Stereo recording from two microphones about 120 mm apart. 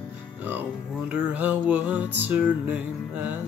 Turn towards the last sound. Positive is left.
turn(degrees=-10)  # may be behind; listen again after turning